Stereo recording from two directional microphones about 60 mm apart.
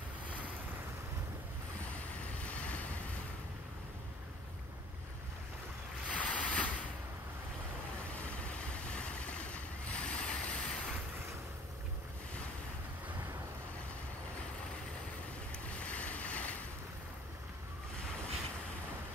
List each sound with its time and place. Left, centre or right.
2.4 s waves: left
6.0 s ocean: left
8.3 s vehicle: left
15.5 s boat: centre